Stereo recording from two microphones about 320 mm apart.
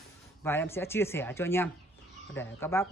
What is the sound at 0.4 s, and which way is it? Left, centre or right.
Speech, centre.